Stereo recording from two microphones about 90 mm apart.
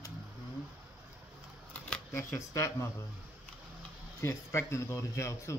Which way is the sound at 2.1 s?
30° left (ahead or behind).